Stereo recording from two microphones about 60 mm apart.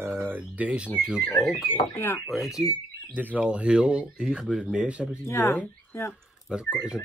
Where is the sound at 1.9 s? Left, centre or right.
Left.